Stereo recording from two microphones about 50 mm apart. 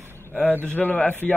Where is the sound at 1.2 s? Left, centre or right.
Left.